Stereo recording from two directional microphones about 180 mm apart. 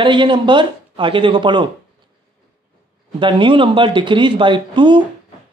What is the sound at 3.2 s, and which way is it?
Speech, 25° right (ahead or behind).